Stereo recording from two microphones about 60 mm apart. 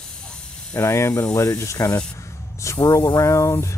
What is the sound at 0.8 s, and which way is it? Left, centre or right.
Speech, left.